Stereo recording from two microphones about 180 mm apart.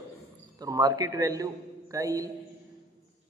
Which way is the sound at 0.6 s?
20° right (ahead or behind).